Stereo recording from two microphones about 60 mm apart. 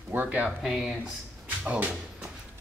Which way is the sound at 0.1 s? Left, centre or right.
Right.